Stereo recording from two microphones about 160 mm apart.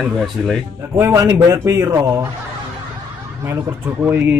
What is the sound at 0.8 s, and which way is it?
Speech, 15° right (ahead or behind).